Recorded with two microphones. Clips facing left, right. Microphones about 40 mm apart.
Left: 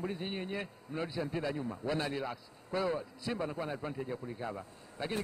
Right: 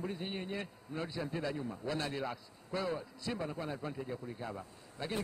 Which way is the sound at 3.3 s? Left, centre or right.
Left.